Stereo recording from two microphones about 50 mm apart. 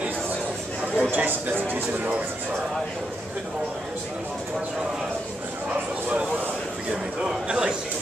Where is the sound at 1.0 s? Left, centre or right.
Right.